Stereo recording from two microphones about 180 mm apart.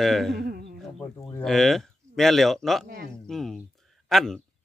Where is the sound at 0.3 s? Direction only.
60° right (ahead or behind).